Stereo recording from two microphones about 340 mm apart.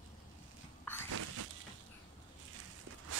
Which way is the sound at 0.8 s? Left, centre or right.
Centre.